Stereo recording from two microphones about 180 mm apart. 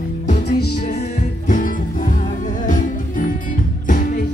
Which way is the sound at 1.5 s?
45° left (ahead or behind).